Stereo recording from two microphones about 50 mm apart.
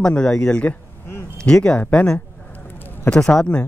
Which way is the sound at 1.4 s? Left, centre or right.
Centre.